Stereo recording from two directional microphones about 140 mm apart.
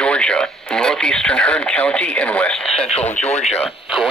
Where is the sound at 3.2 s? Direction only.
50° left (ahead or behind).